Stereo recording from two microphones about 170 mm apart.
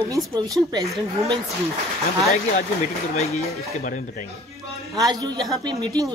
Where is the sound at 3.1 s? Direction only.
40° left (ahead or behind).